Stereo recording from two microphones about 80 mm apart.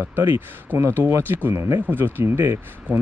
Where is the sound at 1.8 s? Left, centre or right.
Right.